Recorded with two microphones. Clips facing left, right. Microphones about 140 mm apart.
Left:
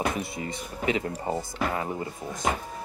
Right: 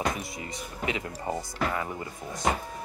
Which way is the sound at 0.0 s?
25° left (ahead or behind).